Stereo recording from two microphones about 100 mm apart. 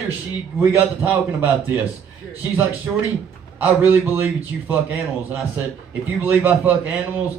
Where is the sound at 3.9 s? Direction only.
20° right (ahead or behind).